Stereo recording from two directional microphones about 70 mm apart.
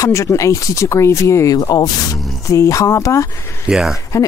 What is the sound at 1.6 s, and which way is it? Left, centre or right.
Speech, left.